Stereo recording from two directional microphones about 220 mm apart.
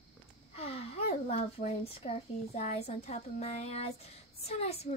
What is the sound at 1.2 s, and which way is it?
A woman's voice, 30° left (ahead or behind).